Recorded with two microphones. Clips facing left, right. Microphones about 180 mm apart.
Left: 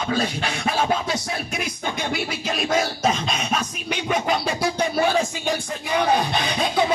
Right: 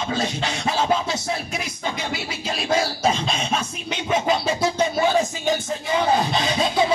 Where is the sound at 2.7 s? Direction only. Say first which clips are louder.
Right 1 dB; 30° right (ahead or behind).